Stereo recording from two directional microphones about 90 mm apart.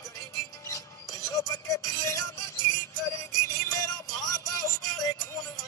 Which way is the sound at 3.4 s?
40° left (ahead or behind).